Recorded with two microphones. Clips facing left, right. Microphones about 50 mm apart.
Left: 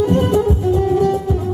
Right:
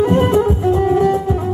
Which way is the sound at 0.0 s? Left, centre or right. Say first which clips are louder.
Right 2 dB; right.